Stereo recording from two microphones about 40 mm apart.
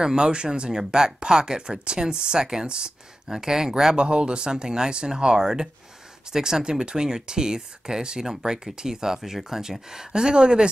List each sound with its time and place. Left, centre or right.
0.0 s speech: centre
4.0 s speech: right